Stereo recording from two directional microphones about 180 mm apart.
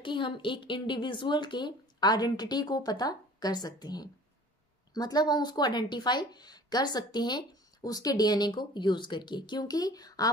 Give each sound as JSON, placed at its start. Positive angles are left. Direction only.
{"t": 0.0, "sound": "speech", "side_deg": 25}